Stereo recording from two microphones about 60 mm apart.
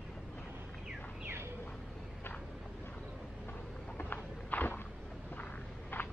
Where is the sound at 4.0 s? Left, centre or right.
Left.